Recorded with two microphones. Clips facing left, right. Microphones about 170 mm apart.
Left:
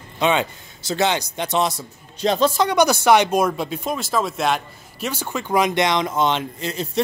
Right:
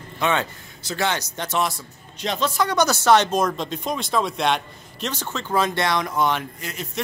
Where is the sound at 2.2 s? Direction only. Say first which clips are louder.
Left 5 dB; 35° left (ahead or behind).